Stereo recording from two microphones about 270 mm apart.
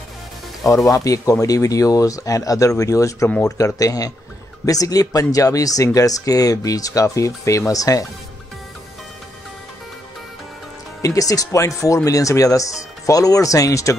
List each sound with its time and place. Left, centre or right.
0.8 s speech: centre
11.0 s speech: centre